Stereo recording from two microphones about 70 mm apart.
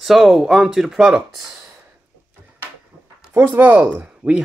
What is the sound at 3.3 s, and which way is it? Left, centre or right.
Speech, right.